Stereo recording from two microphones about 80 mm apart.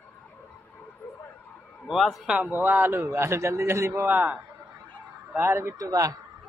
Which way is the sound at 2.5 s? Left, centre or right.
Right.